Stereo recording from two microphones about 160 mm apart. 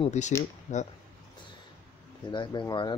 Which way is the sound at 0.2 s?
45° left (ahead or behind).